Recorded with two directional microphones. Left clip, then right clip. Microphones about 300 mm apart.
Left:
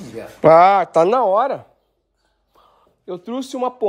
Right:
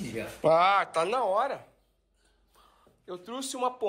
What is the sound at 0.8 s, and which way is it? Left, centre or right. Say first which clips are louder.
Speech: left 12 dB; left.